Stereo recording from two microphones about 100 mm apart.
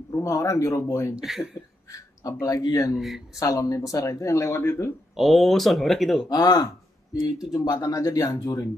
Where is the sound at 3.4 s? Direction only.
35° left (ahead or behind).